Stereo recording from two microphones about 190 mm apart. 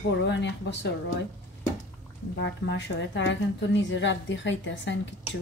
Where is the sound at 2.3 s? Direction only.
65° left (ahead or behind).